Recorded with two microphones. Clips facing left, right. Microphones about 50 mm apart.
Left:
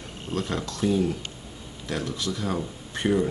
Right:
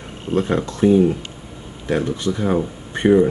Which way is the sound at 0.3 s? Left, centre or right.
Right.